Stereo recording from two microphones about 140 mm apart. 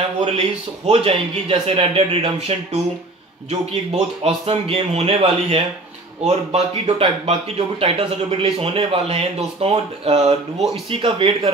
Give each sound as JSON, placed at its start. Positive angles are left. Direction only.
{"t": 0.2, "sound": "speech", "side_deg": -45}